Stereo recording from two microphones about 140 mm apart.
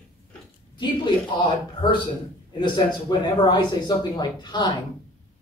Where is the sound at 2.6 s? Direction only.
30° left (ahead or behind).